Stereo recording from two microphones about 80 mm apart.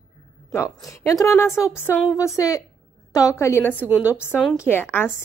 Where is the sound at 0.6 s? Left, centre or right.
Left.